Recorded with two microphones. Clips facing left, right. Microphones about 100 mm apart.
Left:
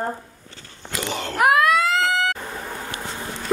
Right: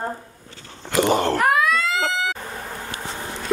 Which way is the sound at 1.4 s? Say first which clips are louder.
Left 2 dB; 5° left (ahead or behind).